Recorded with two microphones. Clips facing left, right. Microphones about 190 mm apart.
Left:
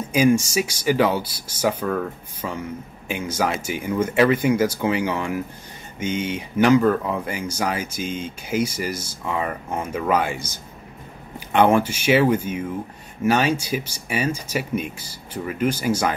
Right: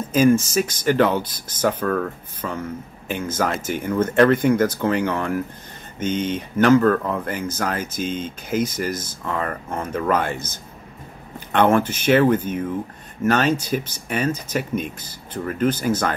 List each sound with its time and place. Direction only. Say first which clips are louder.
0.1 s speech: right 2 dB; 15° left (ahead or behind)